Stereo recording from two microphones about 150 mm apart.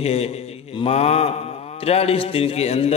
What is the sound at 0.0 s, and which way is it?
A man's voice, 45° left (ahead or behind).